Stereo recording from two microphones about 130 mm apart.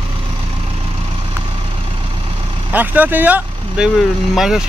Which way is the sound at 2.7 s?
15° right (ahead or behind).